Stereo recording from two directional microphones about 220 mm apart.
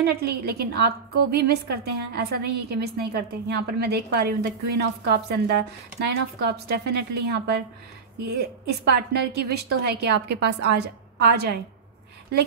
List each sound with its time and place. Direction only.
0.0 s a woman's voice: 45° right (ahead or behind)